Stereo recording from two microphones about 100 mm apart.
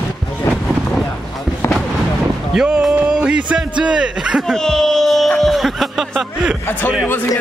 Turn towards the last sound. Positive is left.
turn(degrees=20)  # may be behind; listen again after turning